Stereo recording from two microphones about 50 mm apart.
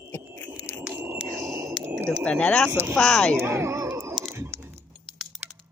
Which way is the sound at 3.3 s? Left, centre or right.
Right.